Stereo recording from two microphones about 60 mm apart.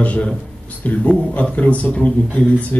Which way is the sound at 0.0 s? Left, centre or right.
Left.